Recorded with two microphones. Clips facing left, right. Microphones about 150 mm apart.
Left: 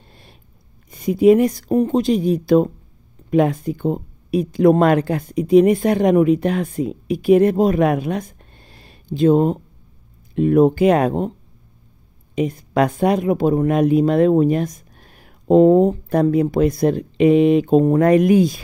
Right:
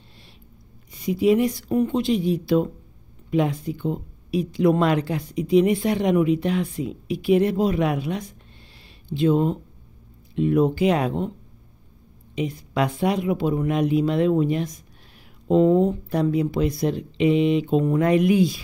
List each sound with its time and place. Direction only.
0.9 s speech: 50° left (ahead or behind)
12.4 s speech: 50° left (ahead or behind)